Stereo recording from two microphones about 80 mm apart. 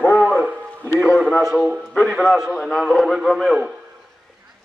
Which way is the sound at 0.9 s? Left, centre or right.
Centre.